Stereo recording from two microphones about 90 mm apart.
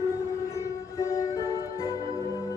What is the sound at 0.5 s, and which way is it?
Music, 35° left (ahead or behind).